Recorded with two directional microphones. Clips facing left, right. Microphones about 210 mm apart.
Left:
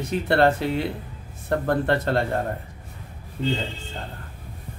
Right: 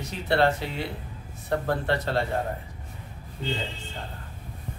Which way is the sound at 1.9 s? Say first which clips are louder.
Left 2 dB; 50° left (ahead or behind).